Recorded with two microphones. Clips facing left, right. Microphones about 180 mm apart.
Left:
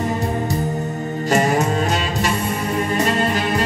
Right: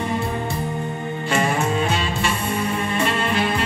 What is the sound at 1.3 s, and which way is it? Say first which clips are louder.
Music: left 4 dB; 40° left (ahead or behind).